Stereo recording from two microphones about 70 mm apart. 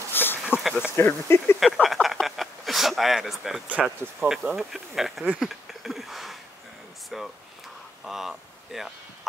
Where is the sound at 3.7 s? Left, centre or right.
Centre.